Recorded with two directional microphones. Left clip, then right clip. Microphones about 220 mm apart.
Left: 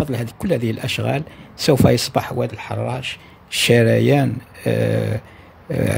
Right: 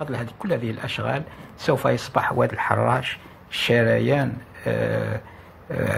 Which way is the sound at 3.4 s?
50° left (ahead or behind).